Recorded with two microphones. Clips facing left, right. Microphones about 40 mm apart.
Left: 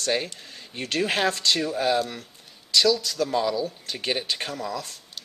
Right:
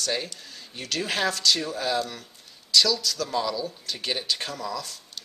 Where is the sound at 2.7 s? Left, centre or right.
Left.